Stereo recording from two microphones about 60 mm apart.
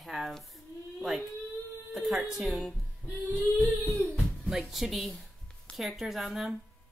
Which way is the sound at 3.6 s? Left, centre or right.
Left.